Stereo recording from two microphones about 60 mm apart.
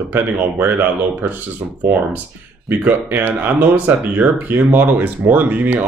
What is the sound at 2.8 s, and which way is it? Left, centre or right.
Speech, right.